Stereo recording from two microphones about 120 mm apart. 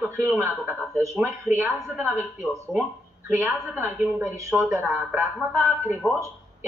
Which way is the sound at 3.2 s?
20° right (ahead or behind).